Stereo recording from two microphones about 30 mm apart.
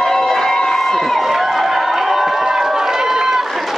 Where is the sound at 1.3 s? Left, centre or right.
Centre.